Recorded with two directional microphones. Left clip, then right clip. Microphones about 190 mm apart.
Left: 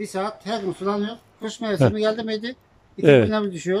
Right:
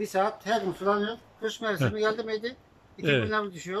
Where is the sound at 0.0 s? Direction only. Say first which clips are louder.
Even; 5° left (ahead or behind).